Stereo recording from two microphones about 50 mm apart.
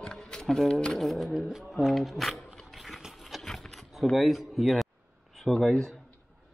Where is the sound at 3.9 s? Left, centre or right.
Centre.